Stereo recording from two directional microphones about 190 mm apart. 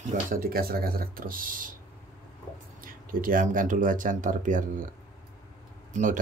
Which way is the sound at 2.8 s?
45° right (ahead or behind).